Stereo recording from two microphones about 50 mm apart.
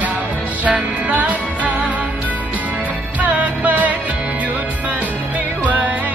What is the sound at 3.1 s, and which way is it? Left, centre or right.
Music, right.